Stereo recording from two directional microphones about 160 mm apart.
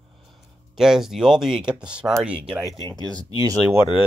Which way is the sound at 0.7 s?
Centre (ahead or behind).